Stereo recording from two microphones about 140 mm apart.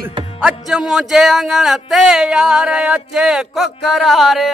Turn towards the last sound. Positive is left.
turn(degrees=0)  # may be behind; listen again after turning